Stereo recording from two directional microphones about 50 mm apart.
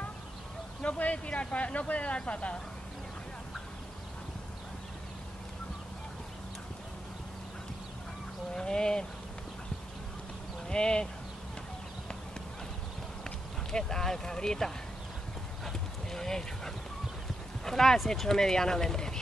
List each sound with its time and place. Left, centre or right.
0.8 s speech: left
8.5 s speech: centre
10.7 s speech: centre
13.7 s speech: centre
15.6 s dog: centre
17.6 s speech: centre